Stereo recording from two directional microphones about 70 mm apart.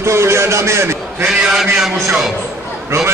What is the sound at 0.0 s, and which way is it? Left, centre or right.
Speech, right.